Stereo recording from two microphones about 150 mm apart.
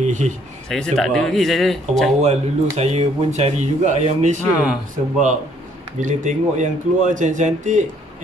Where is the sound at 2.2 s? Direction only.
50° right (ahead or behind).